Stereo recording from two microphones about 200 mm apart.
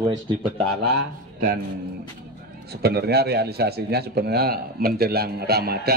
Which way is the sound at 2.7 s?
55° right (ahead or behind).